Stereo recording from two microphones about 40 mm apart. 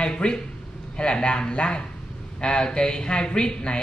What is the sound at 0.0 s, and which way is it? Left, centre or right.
Speech, left.